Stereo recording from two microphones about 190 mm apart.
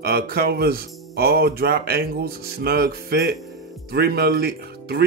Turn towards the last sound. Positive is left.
turn(degrees=-55)  # may be behind; listen again after turning